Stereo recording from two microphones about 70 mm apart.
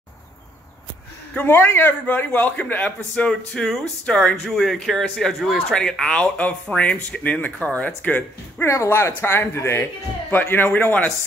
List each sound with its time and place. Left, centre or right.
1.3 s a man's voice: left
8.6 s speech: left